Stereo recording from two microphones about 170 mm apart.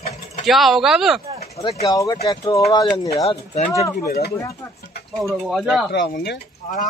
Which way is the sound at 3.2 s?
40° left (ahead or behind).